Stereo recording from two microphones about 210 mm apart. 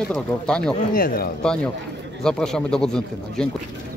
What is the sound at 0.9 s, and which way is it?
Speech, 45° left (ahead or behind).